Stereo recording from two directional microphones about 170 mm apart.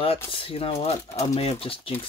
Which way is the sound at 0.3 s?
35° left (ahead or behind).